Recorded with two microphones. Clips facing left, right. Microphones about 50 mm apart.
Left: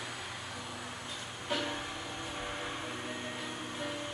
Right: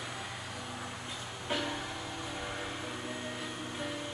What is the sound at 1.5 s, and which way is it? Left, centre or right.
Music, centre.